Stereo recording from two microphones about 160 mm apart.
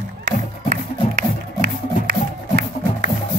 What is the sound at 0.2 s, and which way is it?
Music, 55° right (ahead or behind).